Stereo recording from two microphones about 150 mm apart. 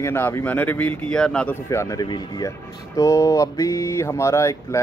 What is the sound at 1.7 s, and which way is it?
Speech, 20° left (ahead or behind).